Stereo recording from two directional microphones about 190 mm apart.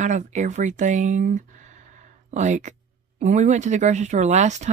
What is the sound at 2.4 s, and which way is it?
Speech, 40° right (ahead or behind).